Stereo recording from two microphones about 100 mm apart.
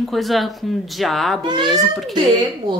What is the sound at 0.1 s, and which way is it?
A woman's voice, centre (ahead or behind).